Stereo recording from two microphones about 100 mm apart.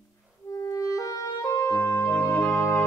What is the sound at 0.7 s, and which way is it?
Music, 35° left (ahead or behind).